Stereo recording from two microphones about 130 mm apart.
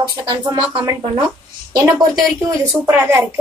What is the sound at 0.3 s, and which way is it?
Speech, 35° right (ahead or behind).